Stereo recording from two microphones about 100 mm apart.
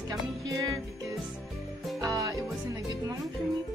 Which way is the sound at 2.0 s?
35° right (ahead or behind).